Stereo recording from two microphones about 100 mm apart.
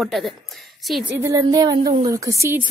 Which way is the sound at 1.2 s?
35° right (ahead or behind).